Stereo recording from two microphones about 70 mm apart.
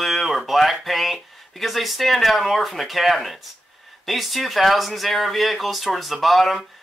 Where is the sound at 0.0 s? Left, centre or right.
Centre.